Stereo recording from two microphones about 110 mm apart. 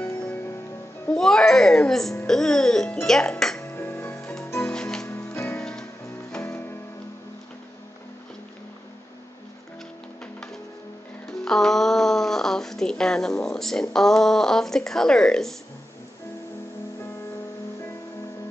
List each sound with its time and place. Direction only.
0.0 s music: 15° left (ahead or behind)
1.0 s a child's voice: 5° left (ahead or behind)
3.6 s music: 20° left (ahead or behind)
4.6 s music: 5° left (ahead or behind)
10.2 s music: 10° left (ahead or behind)